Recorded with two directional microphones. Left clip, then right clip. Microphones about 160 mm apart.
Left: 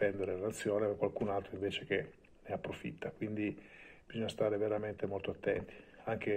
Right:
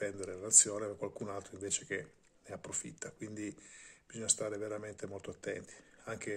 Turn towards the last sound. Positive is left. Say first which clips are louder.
# left 5 dB
turn(degrees=-30)  # may be behind; listen again after turning